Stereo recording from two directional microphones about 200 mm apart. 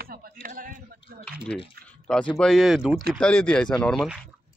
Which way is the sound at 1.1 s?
50° right (ahead or behind).